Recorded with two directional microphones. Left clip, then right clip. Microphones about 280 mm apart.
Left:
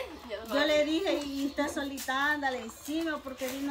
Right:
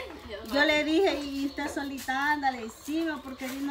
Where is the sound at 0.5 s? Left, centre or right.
Centre.